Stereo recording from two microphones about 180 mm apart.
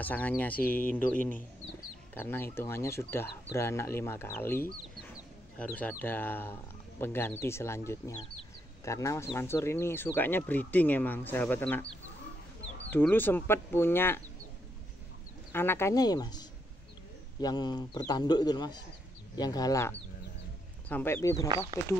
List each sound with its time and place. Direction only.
0.0 s speech: 10° left (ahead or behind)
15.5 s speech: 10° left (ahead or behind)